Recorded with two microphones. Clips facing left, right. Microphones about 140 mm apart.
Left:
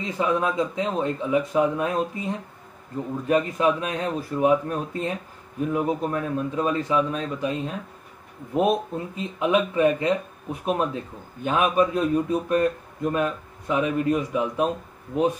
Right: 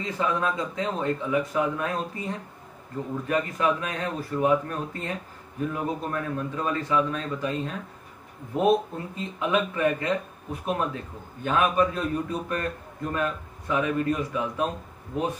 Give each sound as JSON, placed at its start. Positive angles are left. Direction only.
{"t": 0.0, "sound": "speech", "side_deg": 15}